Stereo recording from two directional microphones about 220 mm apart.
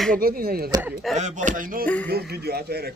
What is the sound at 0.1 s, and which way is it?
Speech, 40° right (ahead or behind).